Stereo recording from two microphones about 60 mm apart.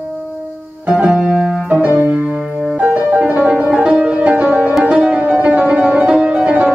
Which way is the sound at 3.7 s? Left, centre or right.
Centre.